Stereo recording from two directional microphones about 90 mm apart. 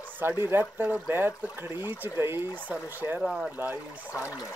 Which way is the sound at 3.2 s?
Centre (ahead or behind).